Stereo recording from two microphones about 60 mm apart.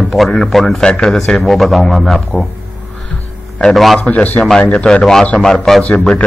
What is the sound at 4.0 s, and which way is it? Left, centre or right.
Speech, left.